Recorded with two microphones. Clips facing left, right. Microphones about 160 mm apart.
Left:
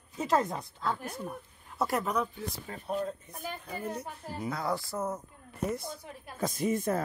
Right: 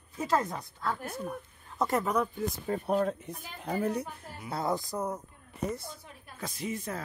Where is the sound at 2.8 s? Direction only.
75° right (ahead or behind).